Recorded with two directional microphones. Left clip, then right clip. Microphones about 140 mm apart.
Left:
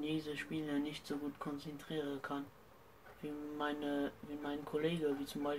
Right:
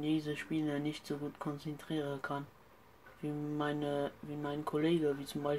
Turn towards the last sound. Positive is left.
turn(degrees=-60)  # may be behind; listen again after turning